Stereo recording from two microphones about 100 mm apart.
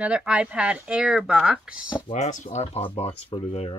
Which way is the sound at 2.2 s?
90° left.